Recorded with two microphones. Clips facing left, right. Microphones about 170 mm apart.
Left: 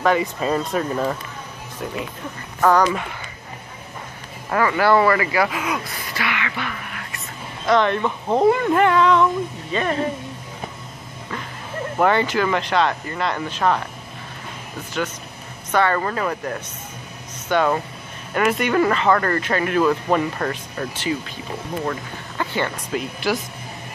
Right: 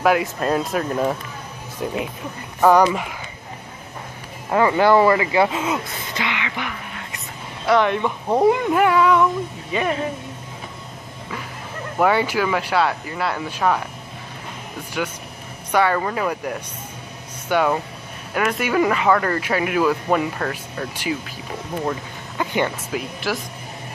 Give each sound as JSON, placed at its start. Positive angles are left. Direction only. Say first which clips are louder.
{"t": 0.0, "sound": "speech", "louder": "right 1 dB", "side_deg": -5}
{"t": 2.6, "sound": "speech", "louder": "right 2 dB", "side_deg": -15}
{"t": 4.5, "sound": "speech", "louder": "right 2 dB", "side_deg": -20}
{"t": 12.0, "sound": "speech", "louder": "even", "side_deg": -10}
{"t": 15.0, "sound": "speech", "louder": "even", "side_deg": -10}
{"t": 20.9, "sound": "speech", "louder": "left 1 dB", "side_deg": -10}
{"t": 22.4, "sound": "speech", "louder": "right 2 dB", "side_deg": -15}
{"t": 22.9, "sound": "speech", "louder": "left 4 dB", "side_deg": 0}